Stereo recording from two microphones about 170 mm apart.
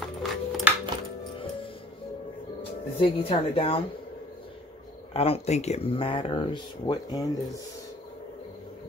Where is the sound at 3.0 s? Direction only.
35° left (ahead or behind).